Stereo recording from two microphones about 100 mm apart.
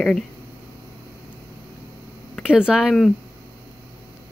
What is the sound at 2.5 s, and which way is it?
Speech, 5° right (ahead or behind).